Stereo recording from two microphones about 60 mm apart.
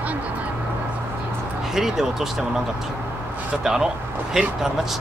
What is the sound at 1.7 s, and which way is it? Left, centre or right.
Speech, centre.